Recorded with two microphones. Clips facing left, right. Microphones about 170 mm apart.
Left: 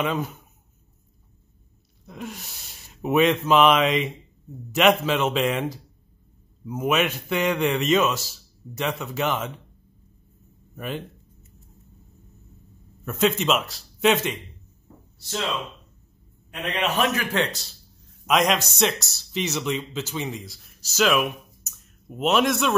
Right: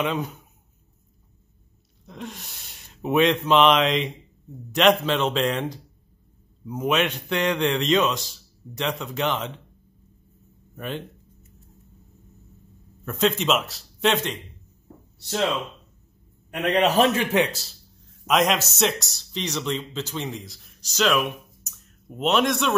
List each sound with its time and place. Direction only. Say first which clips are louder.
0.0 s a man's voice: even; centre (ahead or behind)
2.0 s a man's voice: left 1 dB; 5° left (ahead or behind)
10.8 s a man's voice: even; 5° left (ahead or behind)
13.0 s a man's voice: left 1 dB; 5° left (ahead or behind)
16.7 s a man's voice: right 5 dB; 35° right (ahead or behind)
17.4 s speech: right 3 dB; 5° right (ahead or behind)